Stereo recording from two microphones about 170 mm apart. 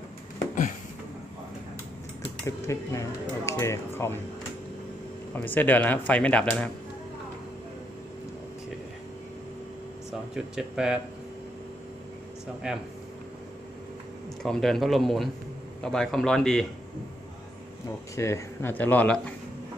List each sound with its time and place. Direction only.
2.4 s speech: 15° left (ahead or behind)
5.3 s speech: 10° left (ahead or behind)
10.3 s speech: 5° right (ahead or behind)
12.6 s speech: 5° right (ahead or behind)
14.4 s speech: centre (ahead or behind)
17.8 s speech: 15° left (ahead or behind)